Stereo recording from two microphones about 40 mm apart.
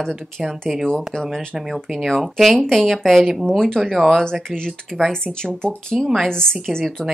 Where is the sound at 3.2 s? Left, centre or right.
Centre.